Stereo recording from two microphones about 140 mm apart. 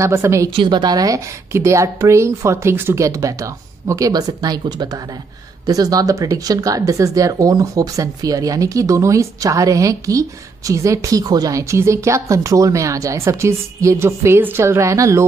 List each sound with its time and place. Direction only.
0.0 s speech: 20° right (ahead or behind)
0.6 s speech: 30° right (ahead or behind)